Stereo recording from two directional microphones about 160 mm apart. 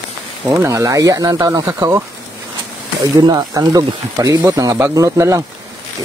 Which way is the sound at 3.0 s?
25° right (ahead or behind).